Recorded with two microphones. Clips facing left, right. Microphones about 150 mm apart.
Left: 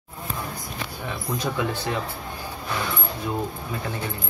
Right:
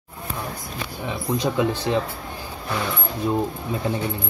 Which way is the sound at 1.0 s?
20° right (ahead or behind).